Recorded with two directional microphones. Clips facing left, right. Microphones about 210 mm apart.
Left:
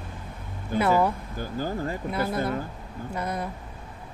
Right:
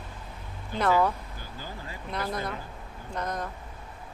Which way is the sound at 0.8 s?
10° left (ahead or behind).